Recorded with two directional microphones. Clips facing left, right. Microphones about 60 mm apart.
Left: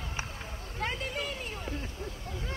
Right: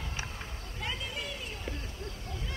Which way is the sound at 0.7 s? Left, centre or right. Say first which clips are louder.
Left 4 dB; left.